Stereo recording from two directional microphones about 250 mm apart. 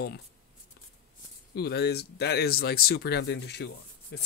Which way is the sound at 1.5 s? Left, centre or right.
Left.